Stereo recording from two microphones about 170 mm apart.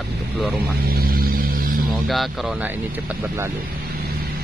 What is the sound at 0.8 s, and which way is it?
Hum, 60° right (ahead or behind).